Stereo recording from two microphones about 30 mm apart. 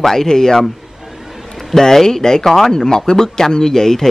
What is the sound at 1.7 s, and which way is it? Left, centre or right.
Speech, centre.